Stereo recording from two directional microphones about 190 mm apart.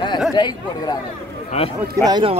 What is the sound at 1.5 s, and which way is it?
Speech, 35° left (ahead or behind).